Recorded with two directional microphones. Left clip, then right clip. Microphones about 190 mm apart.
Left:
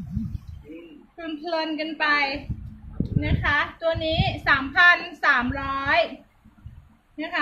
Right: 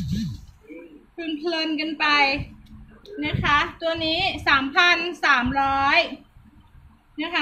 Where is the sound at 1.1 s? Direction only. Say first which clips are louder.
Right 1 dB; 15° left (ahead or behind).